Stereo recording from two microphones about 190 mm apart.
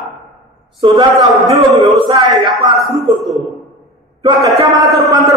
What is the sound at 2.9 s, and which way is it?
Speech, centre (ahead or behind).